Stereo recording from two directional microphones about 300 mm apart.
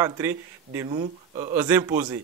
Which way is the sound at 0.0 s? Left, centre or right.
Centre.